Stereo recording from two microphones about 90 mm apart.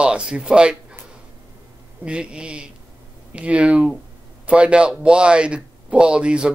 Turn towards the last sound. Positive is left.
turn(degrees=-10)  # may be behind; listen again after turning